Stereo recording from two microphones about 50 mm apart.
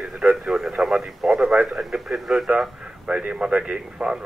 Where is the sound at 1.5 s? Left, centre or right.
Right.